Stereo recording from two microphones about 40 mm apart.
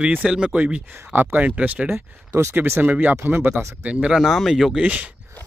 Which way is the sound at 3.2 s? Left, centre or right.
Right.